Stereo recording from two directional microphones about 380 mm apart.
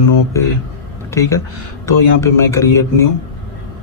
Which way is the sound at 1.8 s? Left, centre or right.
Centre.